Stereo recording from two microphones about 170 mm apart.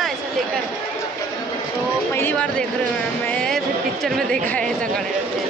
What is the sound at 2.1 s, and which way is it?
Speech, 10° left (ahead or behind).